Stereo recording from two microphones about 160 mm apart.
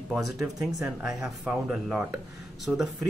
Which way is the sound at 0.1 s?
Centre (ahead or behind).